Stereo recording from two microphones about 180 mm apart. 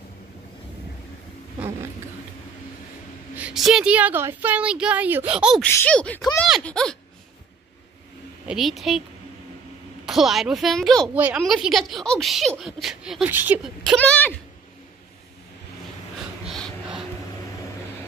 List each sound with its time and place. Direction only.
3.3 s speech: 5° right (ahead or behind)
5.6 s speech: 10° left (ahead or behind)
8.5 s speech: centre (ahead or behind)
10.0 s speech: centre (ahead or behind)
13.9 s speech: 10° left (ahead or behind)
16.4 s a sound: centre (ahead or behind)